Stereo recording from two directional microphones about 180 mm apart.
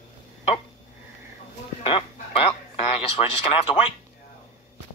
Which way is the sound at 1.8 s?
30° left (ahead or behind).